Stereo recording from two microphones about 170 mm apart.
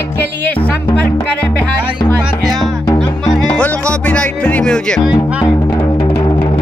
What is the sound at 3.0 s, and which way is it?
Music, 5° left (ahead or behind).